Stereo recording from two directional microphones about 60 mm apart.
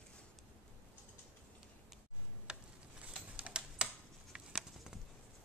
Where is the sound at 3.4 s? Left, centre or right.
Centre.